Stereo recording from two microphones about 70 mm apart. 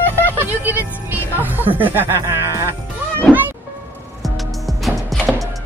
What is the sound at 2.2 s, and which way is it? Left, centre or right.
Music, right.